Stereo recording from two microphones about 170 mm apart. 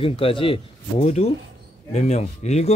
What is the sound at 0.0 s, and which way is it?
Speech, 30° left (ahead or behind).